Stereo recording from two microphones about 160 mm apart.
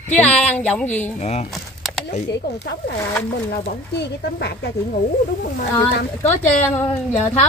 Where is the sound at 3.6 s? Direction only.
90° left.